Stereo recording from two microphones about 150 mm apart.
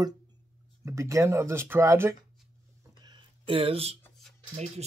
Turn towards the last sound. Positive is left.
turn(degrees=-45)  # may be behind; listen again after turning